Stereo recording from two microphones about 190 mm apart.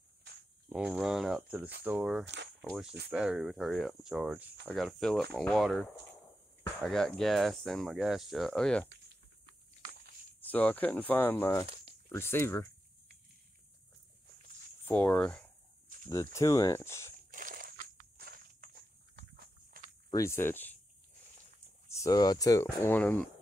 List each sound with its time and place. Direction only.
0.7 s speech: 5° right (ahead or behind)
2.2 s speech: 65° right (ahead or behind)
3.1 s speech: 5° right (ahead or behind)
10.4 s speech: 10° left (ahead or behind)
11.6 s a sound: 30° right (ahead or behind)
12.1 s speech: 15° left (ahead or behind)
14.9 s speech: 5° left (ahead or behind)
17.3 s a sound: 45° right (ahead or behind)
19.3 s walk: 55° right (ahead or behind)
20.1 s speech: 15° left (ahead or behind)
21.8 s speech: 15° left (ahead or behind)